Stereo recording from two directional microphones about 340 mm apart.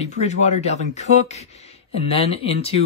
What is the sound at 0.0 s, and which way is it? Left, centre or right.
Speech, centre.